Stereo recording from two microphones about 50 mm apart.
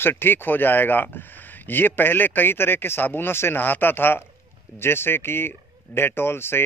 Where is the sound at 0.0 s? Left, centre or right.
Left.